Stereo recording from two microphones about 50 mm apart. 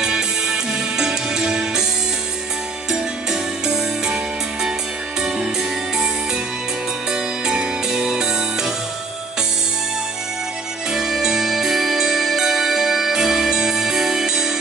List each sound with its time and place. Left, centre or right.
0.0 s music: centre
2.9 s music: centre
7.1 s music: centre
10.9 s music: centre